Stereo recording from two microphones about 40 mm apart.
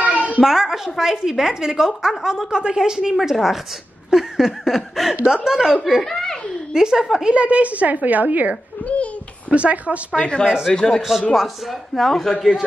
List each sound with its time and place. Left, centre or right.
0.4 s a woman's voice: centre
5.2 s a woman's voice: centre
6.0 s a sound: centre
6.7 s a woman's voice: centre
7.3 s a woman's voice: right
8.8 s babbling: left
9.5 s speech: right
10.1 s speech: left
10.4 s a woman's voice: centre
10.7 s a man's voice: centre
11.0 s a woman's voice: centre